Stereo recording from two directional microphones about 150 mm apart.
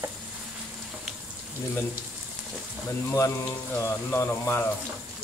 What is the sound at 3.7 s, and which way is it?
Speech, 15° left (ahead or behind).